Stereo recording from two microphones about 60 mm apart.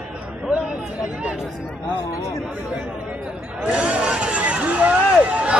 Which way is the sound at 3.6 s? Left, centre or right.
Centre.